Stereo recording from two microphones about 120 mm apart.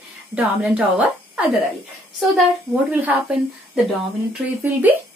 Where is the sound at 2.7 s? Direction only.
15° right (ahead or behind).